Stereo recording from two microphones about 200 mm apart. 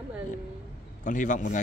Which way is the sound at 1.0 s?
40° left (ahead or behind).